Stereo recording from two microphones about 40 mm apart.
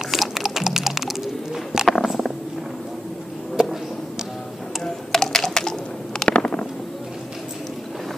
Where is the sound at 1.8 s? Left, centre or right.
Centre.